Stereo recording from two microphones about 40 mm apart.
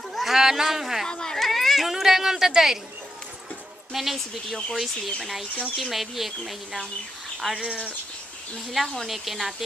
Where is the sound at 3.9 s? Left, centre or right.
Centre.